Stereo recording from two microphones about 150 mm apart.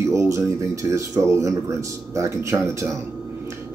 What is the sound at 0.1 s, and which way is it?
Speech, 20° right (ahead or behind).